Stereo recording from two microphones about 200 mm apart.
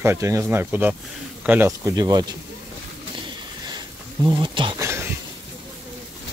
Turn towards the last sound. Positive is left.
turn(degrees=-25)  # may be behind; listen again after turning